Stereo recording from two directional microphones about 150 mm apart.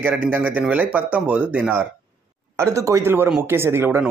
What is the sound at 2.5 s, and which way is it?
A man's voice, 20° right (ahead or behind).